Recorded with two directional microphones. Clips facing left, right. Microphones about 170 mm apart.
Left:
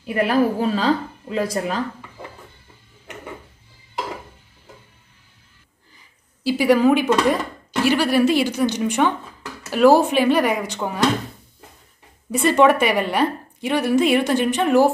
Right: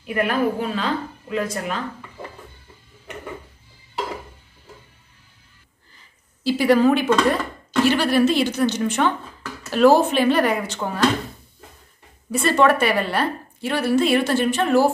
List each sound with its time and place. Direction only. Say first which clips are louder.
0.0 s a woman's voice: left 3 dB; 35° left (ahead or behind)
5.9 s a sound: even; 10° left (ahead or behind)
7.8 s a woman's voice: even; 10° left (ahead or behind)
12.3 s a woman's voice: left 2 dB; 15° left (ahead or behind)